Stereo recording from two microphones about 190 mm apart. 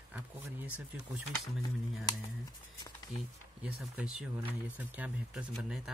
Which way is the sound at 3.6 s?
5° right (ahead or behind).